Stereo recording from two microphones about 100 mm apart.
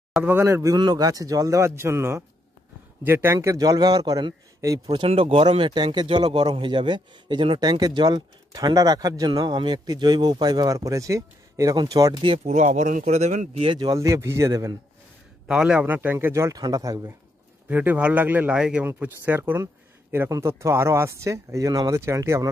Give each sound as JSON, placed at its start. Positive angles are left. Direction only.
{"t": 0.2, "sound": "speech", "side_deg": -25}
{"t": 0.7, "sound": "speech", "side_deg": -45}
{"t": 3.3, "sound": "speech", "side_deg": -40}
{"t": 4.6, "sound": "speech", "side_deg": -35}
{"t": 4.9, "sound": "a man's voice", "side_deg": -65}
{"t": 9.3, "sound": "speech", "side_deg": -50}
{"t": 11.7, "sound": "speech", "side_deg": -45}
{"t": 12.2, "sound": "speech", "side_deg": -80}
{"t": 13.2, "sound": "speech", "side_deg": -90}
{"t": 13.9, "sound": "speech", "side_deg": -30}
{"t": 15.4, "sound": "speech", "side_deg": -10}
{"t": 16.5, "sound": "speech", "side_deg": -40}
{"t": 17.6, "sound": "speech", "side_deg": -15}